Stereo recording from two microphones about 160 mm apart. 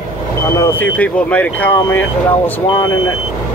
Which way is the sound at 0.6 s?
10° left (ahead or behind).